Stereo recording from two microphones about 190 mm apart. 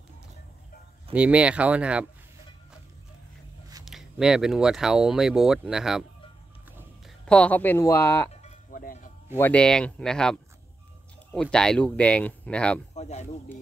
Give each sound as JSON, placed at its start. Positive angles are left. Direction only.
{"t": 1.1, "sound": "speech", "side_deg": -5}
{"t": 3.8, "sound": "speech", "side_deg": 0}
{"t": 7.2, "sound": "speech", "side_deg": 5}
{"t": 8.3, "sound": "a sound", "side_deg": 35}
{"t": 8.7, "sound": "a sound", "side_deg": 45}
{"t": 9.4, "sound": "speech", "side_deg": 5}
{"t": 12.9, "sound": "speech", "side_deg": 35}